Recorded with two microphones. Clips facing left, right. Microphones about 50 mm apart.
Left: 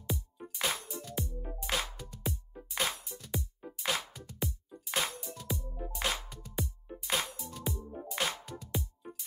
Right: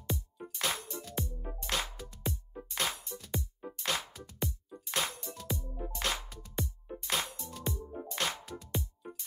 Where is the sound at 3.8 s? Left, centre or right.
Centre.